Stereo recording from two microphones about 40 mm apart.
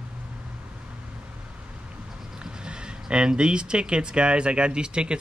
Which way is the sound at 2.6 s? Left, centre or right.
Right.